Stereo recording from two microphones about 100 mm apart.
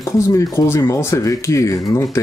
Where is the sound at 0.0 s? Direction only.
30° left (ahead or behind).